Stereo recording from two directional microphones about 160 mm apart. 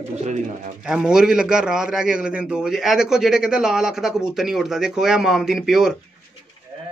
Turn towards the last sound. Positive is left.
turn(degrees=0)  # may be behind; listen again after turning